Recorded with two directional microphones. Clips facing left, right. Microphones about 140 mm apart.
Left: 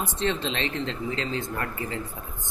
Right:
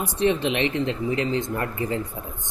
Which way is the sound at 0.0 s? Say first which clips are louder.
Right 5 dB; 10° right (ahead or behind).